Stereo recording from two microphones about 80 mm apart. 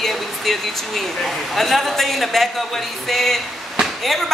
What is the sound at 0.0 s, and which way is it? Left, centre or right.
Speech, centre.